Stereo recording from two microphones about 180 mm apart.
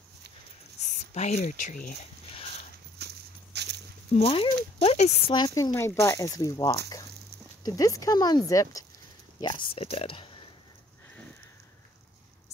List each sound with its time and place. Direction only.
1.1 s speech: 40° left (ahead or behind)
3.0 s walk: 65° right (ahead or behind)
4.1 s speech: 30° left (ahead or behind)